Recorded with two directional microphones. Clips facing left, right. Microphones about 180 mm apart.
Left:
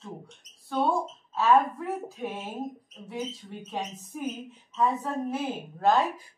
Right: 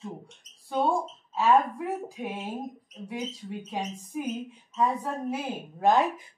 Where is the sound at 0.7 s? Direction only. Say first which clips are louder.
Even; 15° right (ahead or behind).